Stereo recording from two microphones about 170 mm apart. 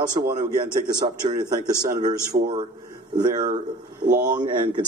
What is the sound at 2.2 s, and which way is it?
Speech, 55° right (ahead or behind).